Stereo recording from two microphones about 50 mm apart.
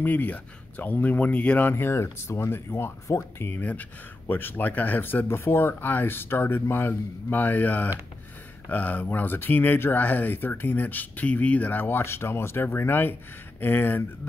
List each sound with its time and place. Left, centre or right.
0.0 s speech: left
1.7 s speech: left
3.4 s speech: left